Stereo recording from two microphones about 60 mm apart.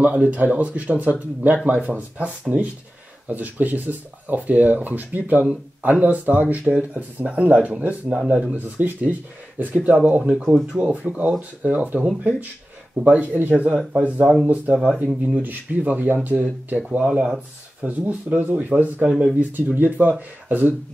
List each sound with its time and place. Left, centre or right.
0.0 s speech: right
8.5 s speech: right
10.4 s speech: centre
10.8 s speech: right
17.8 s speech: right
19.0 s speech: centre
19.7 s speech: right